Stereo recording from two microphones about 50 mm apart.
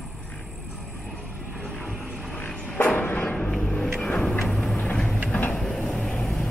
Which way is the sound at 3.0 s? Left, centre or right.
Left.